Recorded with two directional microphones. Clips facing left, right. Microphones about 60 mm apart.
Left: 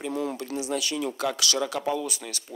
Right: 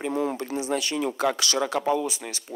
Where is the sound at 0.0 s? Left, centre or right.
Right.